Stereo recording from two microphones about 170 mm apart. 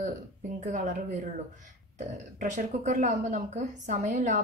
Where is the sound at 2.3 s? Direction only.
45° right (ahead or behind).